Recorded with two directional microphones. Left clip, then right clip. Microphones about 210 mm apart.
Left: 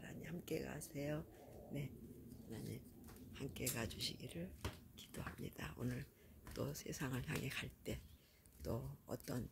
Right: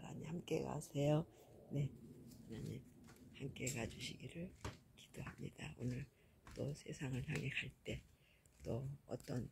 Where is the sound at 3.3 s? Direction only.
15° left (ahead or behind).